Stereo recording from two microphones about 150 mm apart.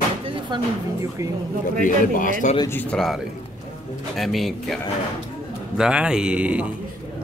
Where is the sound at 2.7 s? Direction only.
10° left (ahead or behind).